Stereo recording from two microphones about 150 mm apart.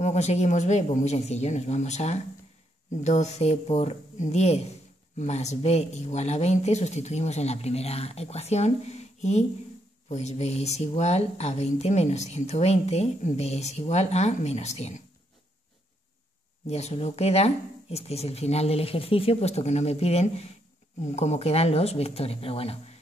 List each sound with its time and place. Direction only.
0.0 s speech: 50° left (ahead or behind)
16.6 s speech: 45° left (ahead or behind)